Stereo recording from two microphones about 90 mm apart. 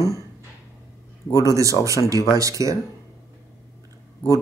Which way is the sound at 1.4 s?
35° right (ahead or behind).